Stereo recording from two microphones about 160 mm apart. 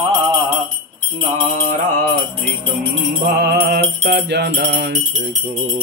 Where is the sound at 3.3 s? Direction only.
85° right.